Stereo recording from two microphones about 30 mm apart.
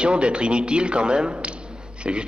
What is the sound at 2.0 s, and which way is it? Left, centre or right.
Speech, right.